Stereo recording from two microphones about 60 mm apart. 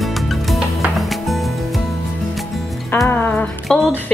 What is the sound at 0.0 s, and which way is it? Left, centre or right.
Music, centre.